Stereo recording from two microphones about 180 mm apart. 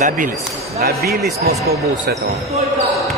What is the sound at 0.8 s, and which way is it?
Speech, 60° right (ahead or behind).